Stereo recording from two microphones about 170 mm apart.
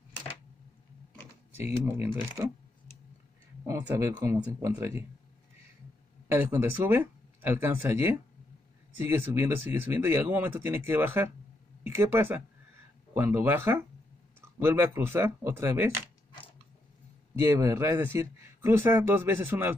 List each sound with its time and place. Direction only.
1.6 s speech: 15° right (ahead or behind)
3.6 s speech: 15° right (ahead or behind)
6.2 s speech: 15° right (ahead or behind)
17.4 s speech: 15° right (ahead or behind)